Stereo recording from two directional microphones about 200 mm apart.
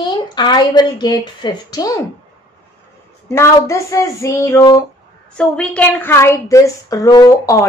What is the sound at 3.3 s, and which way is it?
A woman's voice, 15° left (ahead or behind).